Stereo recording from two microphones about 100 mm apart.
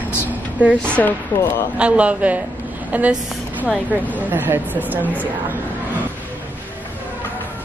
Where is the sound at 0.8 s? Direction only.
10° left (ahead or behind).